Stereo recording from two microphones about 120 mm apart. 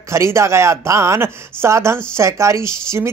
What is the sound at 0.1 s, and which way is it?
Speech, 25° right (ahead or behind).